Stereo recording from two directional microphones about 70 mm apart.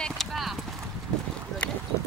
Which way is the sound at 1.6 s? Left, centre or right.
Centre.